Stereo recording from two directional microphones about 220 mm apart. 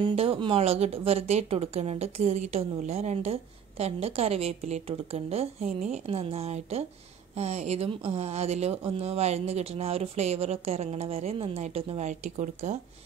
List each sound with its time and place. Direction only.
0.0 s speech: 25° right (ahead or behind)